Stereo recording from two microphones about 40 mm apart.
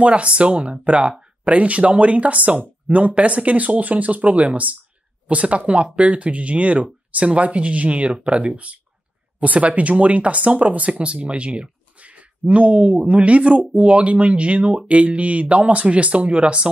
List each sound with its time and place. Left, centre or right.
0.0 s speech: right
10.9 s speech: right